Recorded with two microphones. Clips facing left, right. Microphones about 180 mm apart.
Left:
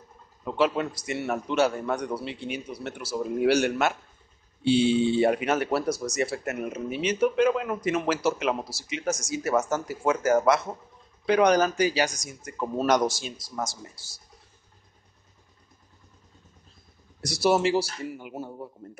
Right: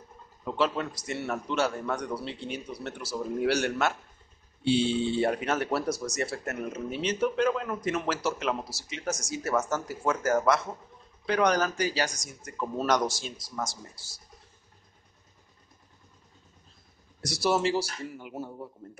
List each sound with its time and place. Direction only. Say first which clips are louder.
0.6 s speech: left 4 dB; 15° left (ahead or behind)
17.4 s speech: left 4 dB; 15° left (ahead or behind)